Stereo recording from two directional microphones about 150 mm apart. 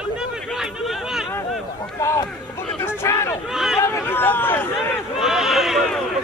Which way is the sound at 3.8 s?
15° left (ahead or behind).